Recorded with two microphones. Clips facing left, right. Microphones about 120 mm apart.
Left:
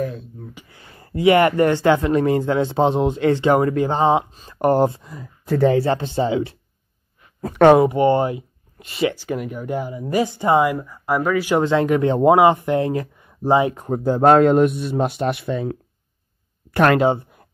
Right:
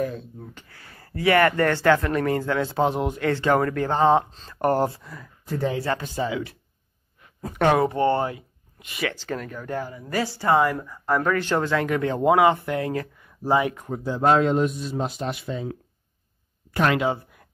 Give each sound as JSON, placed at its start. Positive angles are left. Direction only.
{"t": 0.0, "sound": "speech", "side_deg": 0}
{"t": 0.7, "sound": "speech", "side_deg": 20}
{"t": 5.4, "sound": "speech", "side_deg": 65}
{"t": 5.8, "sound": "speech", "side_deg": 30}
{"t": 7.4, "sound": "speech", "side_deg": 75}
{"t": 7.8, "sound": "speech", "side_deg": 15}
{"t": 9.1, "sound": "speech", "side_deg": 15}
{"t": 11.6, "sound": "speech", "side_deg": 20}
{"t": 13.8, "sound": "a man's voice", "side_deg": 45}
{"t": 17.0, "sound": "a sound", "side_deg": 30}